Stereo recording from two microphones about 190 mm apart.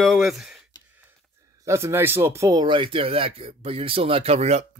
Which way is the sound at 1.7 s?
15° right (ahead or behind).